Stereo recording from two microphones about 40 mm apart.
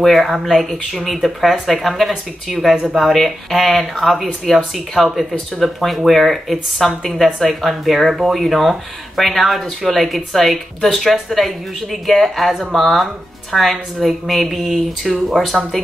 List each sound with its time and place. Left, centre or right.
0.0 s speech: centre
2.7 s speech: centre
3.0 s speech: centre